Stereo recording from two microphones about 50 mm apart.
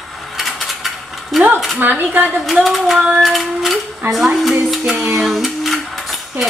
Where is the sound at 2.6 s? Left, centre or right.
Centre.